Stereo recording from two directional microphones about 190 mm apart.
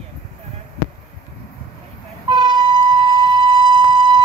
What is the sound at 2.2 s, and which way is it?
Train, 25° right (ahead or behind).